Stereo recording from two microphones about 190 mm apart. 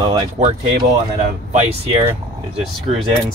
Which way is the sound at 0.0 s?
30° right (ahead or behind).